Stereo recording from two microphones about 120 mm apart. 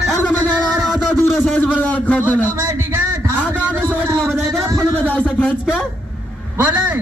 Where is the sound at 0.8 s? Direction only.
Centre (ahead or behind).